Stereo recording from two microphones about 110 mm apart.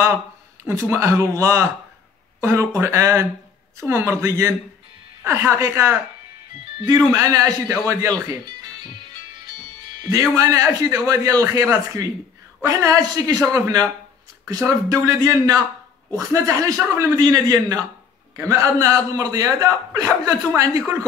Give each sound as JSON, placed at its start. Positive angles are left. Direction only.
{"t": 0.7, "sound": "speech", "side_deg": -25}
{"t": 7.1, "sound": "speech", "side_deg": -30}
{"t": 9.8, "sound": "music", "side_deg": -40}
{"t": 10.3, "sound": "a man's voice", "side_deg": -30}